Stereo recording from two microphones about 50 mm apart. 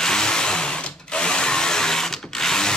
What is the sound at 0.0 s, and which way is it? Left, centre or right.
Drill, centre.